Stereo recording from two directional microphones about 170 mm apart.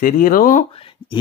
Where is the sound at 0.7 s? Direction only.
35° left (ahead or behind).